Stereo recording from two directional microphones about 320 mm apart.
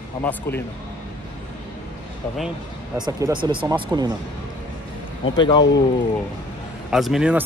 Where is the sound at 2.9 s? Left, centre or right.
Centre.